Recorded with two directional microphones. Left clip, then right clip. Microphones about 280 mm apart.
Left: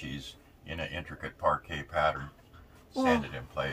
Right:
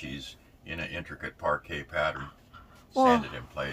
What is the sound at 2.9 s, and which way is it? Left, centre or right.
Speech, centre.